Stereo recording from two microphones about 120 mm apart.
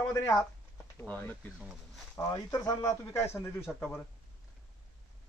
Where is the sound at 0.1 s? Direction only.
25° left (ahead or behind).